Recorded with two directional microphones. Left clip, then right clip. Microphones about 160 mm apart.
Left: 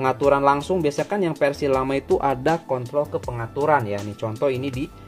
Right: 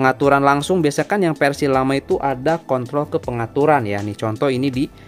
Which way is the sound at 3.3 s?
90° right.